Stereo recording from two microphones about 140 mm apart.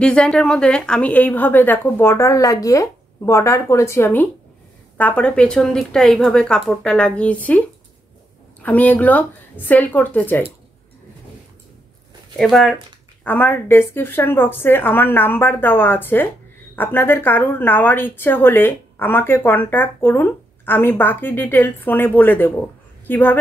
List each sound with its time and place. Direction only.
0.0 s a woman's voice: 5° left (ahead or behind)
8.6 s a woman's voice: 10° left (ahead or behind)
12.4 s speech: centre (ahead or behind)
13.2 s a woman's voice: 15° left (ahead or behind)